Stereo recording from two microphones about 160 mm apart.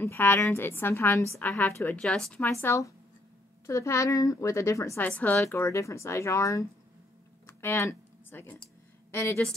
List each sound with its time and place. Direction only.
0.0 s a woman's voice: 15° left (ahead or behind)
7.4 s a sound: 15° left (ahead or behind)
9.1 s speech: 20° left (ahead or behind)